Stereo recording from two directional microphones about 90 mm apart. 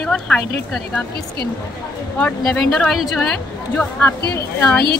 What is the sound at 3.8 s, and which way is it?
Speech, 15° left (ahead or behind).